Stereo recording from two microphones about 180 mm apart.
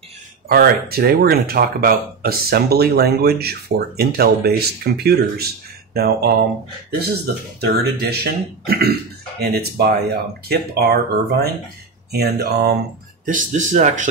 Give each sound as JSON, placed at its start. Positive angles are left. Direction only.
{"t": 0.5, "sound": "speech", "side_deg": -55}
{"t": 7.6, "sound": "speech", "side_deg": -60}
{"t": 13.2, "sound": "speech", "side_deg": -45}